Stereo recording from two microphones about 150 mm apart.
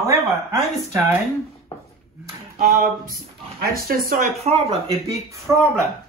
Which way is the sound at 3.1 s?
75° right (ahead or behind).